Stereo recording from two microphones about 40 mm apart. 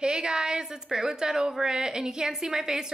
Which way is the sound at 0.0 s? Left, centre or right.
Right.